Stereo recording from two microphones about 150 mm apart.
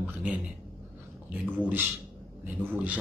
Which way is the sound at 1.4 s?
10° right (ahead or behind).